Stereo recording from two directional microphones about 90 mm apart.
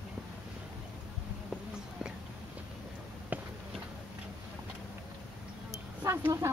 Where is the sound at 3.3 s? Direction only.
20° right (ahead or behind).